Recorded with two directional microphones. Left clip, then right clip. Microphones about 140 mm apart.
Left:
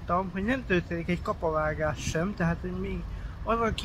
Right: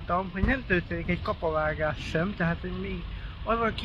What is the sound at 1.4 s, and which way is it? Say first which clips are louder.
Speech: right 1 dB; 15° left (ahead or behind).